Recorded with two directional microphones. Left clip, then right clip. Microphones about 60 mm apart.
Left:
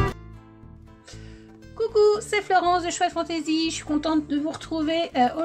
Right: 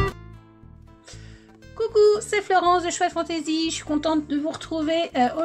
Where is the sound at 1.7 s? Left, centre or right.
Right.